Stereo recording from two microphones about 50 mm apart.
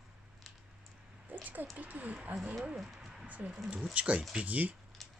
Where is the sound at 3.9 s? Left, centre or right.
Right.